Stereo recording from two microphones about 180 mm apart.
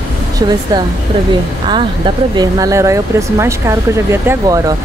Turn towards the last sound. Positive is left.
turn(degrees=-15)  # may be behind; listen again after turning